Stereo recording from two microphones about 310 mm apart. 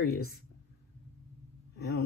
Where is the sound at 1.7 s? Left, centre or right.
Left.